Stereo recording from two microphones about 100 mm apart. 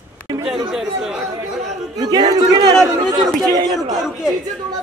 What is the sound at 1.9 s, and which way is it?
Speech, 40° right (ahead or behind).